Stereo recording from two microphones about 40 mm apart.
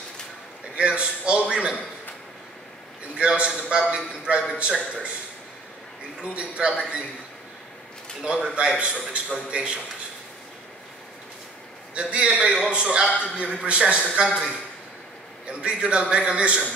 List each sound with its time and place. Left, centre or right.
0.7 s a man's voice: right
3.2 s a man's voice: right
6.2 s a man's voice: right
8.2 s a man's voice: centre
8.5 s a man's voice: right
11.9 s a man's voice: right
15.6 s a man's voice: right